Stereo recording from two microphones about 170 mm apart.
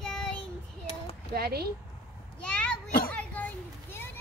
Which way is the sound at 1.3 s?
65° right (ahead or behind).